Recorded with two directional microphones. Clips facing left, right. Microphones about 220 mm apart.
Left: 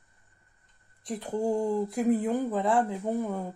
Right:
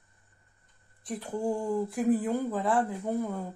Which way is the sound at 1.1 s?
25° left (ahead or behind).